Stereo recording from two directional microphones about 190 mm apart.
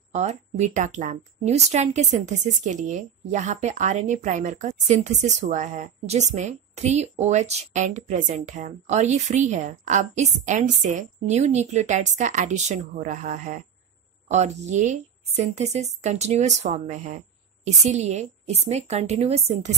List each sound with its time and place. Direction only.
0.1 s a woman's voice: 35° right (ahead or behind)